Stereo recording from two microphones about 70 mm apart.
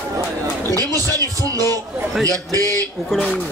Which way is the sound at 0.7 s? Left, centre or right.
Right.